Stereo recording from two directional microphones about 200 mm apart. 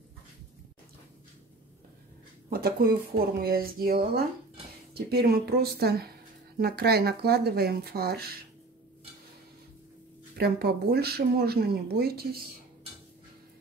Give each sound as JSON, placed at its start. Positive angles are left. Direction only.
{"t": 2.5, "sound": "speech", "side_deg": -50}
{"t": 10.3, "sound": "speech", "side_deg": -50}